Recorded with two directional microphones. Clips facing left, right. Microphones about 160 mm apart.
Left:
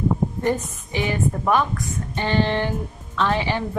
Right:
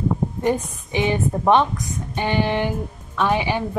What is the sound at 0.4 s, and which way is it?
A woman's voice, 15° right (ahead or behind).